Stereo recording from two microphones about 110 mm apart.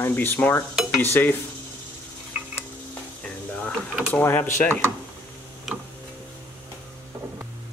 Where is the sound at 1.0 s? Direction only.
20° left (ahead or behind).